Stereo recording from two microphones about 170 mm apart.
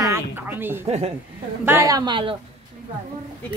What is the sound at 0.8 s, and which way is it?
Speech, 35° right (ahead or behind).